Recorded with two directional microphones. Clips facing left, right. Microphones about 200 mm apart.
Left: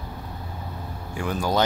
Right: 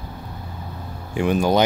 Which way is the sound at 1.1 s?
20° right (ahead or behind).